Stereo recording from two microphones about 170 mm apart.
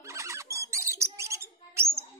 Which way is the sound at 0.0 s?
15° right (ahead or behind).